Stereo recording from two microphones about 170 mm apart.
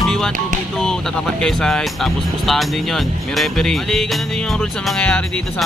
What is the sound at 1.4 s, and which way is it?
Speech, 5° left (ahead or behind).